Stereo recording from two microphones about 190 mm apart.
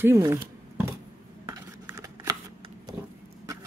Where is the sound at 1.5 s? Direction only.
20° right (ahead or behind).